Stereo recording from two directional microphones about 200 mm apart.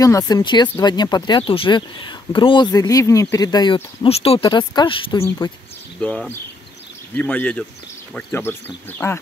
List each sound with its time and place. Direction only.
0.0 s speech: 20° left (ahead or behind)
5.9 s speech: 5° left (ahead or behind)